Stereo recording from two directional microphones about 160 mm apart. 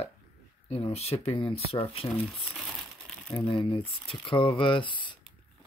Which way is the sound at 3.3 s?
30° left (ahead or behind).